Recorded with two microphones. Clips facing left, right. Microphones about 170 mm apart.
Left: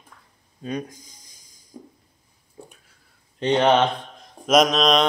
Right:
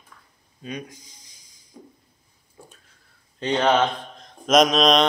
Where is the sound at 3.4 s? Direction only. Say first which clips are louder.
Left 2 dB; 20° left (ahead or behind).